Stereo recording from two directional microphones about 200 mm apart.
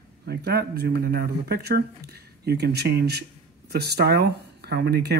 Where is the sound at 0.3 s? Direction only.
55° right (ahead or behind).